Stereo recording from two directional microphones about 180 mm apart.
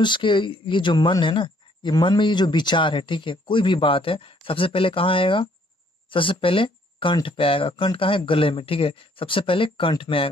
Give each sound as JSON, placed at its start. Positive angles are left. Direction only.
{"t": 0.0, "sound": "speech", "side_deg": 25}